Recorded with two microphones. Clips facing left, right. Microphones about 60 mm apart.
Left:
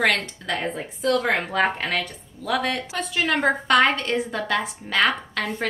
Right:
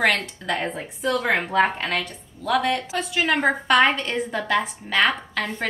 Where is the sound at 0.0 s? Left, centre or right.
Centre.